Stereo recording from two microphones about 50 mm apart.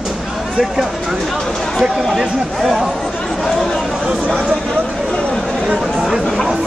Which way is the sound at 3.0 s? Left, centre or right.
Centre.